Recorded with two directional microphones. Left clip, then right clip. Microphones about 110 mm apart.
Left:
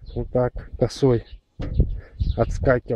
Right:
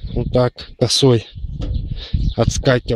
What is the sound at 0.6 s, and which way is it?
Speech, 10° right (ahead or behind).